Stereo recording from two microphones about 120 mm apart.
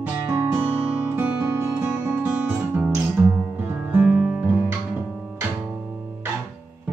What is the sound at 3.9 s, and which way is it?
Music, 10° right (ahead or behind).